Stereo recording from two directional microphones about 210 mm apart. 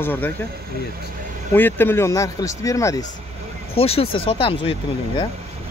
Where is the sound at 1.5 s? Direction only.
10° left (ahead or behind).